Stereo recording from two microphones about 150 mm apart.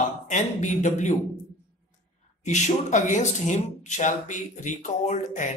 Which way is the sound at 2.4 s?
50° left (ahead or behind).